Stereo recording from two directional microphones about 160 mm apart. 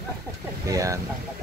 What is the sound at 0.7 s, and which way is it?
Speech, 20° right (ahead or behind).